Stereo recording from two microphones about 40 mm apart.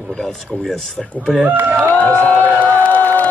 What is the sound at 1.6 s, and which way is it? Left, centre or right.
Speech, right.